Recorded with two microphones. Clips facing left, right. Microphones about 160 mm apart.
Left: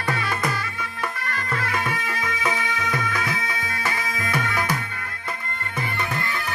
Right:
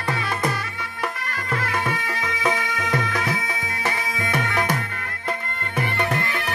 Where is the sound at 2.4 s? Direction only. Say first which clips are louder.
Right 4 dB; 35° right (ahead or behind).